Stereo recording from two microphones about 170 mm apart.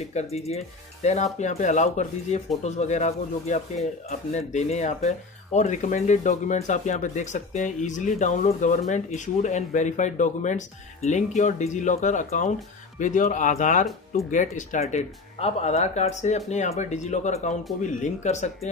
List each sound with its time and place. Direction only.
0.0 s speech: 40° left (ahead or behind)